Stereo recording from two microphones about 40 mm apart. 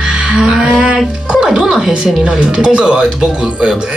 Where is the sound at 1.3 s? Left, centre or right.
Centre.